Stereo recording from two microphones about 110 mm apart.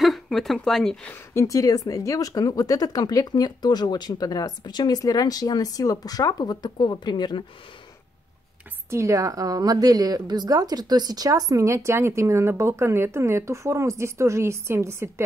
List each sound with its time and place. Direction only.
0.0 s a woman's voice: centre (ahead or behind)
1.3 s speech: 30° left (ahead or behind)
8.9 s a woman's voice: 30° right (ahead or behind)